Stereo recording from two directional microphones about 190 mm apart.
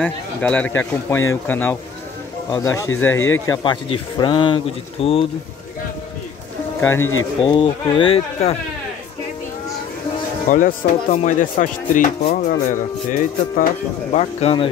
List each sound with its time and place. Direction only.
0.0 s speech: 5° left (ahead or behind); by 5.3 s 30° left (ahead or behind)
6.8 s speech: 15° left (ahead or behind)
7.4 s speech: 25° left (ahead or behind)
10.5 s speech: 45° left (ahead or behind)